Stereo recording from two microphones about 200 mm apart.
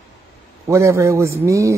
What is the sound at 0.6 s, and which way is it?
Speech, 15° right (ahead or behind).